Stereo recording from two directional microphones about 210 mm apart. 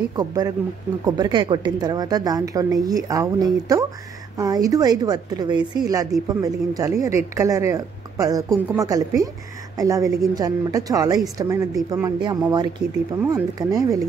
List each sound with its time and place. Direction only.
0.1 s a woman's voice: 20° right (ahead or behind)